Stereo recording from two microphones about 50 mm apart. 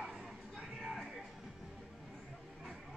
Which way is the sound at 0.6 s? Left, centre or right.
Centre.